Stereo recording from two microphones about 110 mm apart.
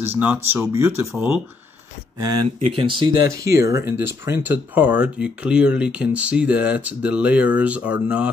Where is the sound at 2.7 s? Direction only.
55° right (ahead or behind).